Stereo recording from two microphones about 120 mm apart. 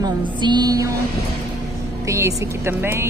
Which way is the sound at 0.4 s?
35° right (ahead or behind).